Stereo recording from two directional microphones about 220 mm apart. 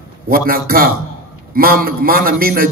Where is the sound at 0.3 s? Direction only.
40° right (ahead or behind).